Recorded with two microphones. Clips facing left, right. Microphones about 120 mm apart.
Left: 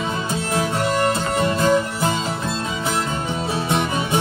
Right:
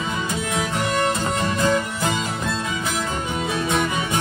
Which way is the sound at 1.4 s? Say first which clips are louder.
Left 3 dB; 25° left (ahead or behind).